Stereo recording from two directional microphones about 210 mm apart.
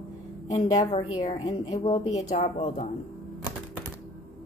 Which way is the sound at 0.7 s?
30° left (ahead or behind).